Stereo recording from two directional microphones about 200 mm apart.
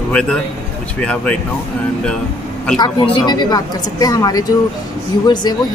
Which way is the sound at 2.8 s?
20° left (ahead or behind).